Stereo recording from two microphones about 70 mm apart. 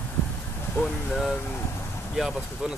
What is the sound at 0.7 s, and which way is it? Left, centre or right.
Speech, centre.